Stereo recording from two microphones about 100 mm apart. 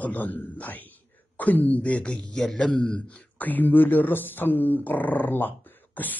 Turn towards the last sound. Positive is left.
turn(degrees=20)  # may be behind; listen again after turning